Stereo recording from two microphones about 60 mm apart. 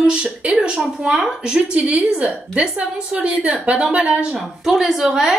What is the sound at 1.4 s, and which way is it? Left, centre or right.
A woman's voice, centre.